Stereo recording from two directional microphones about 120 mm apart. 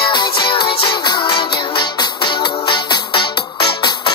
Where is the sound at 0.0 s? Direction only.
40° left (ahead or behind).